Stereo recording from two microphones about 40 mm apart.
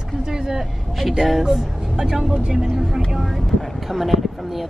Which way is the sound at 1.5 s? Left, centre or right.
Centre.